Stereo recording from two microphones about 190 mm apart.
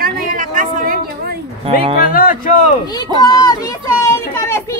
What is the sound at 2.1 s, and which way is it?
Speech, 45° left (ahead or behind).